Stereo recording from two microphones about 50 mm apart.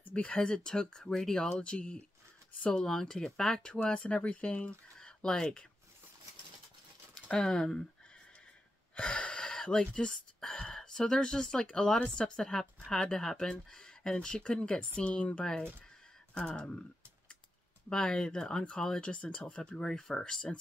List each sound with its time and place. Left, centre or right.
0.1 s speech: left
2.7 s speech: centre
4.9 s a sound: centre
7.2 s speech: centre
8.9 s speech: left
17.8 s speech: centre